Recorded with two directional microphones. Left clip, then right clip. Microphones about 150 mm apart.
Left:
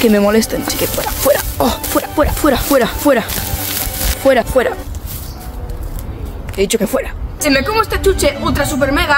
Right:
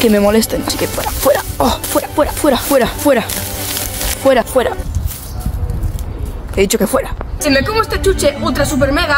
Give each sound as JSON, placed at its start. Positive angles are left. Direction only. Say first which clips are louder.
{"t": 0.0, "sound": "speech", "louder": "even", "side_deg": 0}
{"t": 6.5, "sound": "speech", "louder": "right 2 dB", "side_deg": -25}
{"t": 7.3, "sound": "a woman's voice", "louder": "even", "side_deg": 5}